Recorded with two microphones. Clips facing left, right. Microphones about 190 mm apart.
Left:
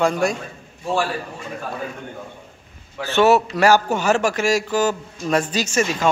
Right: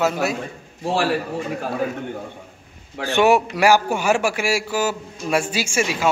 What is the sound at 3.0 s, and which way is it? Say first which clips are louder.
A man's voice: left 1 dB; 15° right (ahead or behind).